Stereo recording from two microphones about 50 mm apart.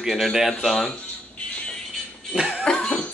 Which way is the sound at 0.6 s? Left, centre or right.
Centre.